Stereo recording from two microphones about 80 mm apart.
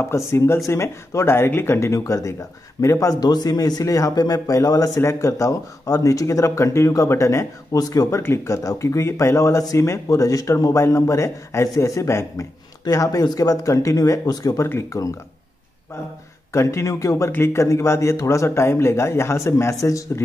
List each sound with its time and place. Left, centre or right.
0.0 s speech: left
2.0 s speech: left
7.7 s speech: left
14.6 s speech: left
16.5 s speech: left